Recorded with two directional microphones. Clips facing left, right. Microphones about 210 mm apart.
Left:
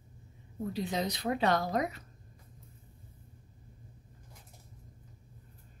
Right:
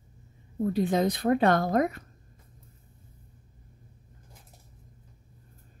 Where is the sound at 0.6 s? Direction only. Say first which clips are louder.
Right 9 dB; 50° right (ahead or behind).